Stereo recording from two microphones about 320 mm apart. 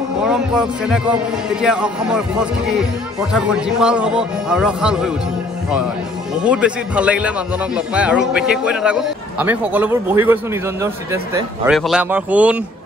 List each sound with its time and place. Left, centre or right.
0.2 s speech: centre
6.4 s speech: centre